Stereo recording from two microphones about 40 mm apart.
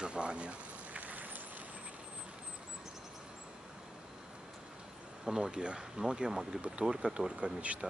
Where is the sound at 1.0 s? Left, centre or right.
Right.